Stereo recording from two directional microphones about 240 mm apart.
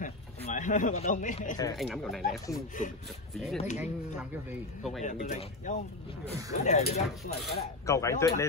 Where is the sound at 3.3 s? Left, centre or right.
Centre.